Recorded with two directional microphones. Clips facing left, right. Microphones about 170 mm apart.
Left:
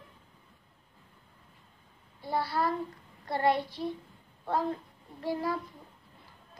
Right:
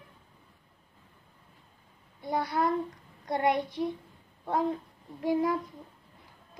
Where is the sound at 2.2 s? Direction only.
20° right (ahead or behind).